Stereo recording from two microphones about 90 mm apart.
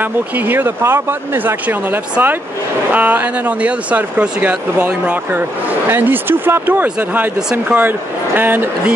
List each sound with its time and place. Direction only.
0.0 s speech: 25° right (ahead or behind)
5.9 s speech: 25° right (ahead or behind)